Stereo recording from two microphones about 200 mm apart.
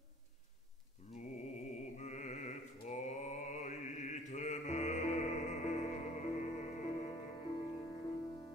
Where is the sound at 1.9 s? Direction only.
35° left (ahead or behind).